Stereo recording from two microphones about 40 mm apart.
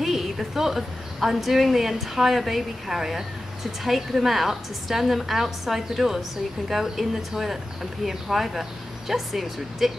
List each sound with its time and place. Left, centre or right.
0.0 s a woman's voice: centre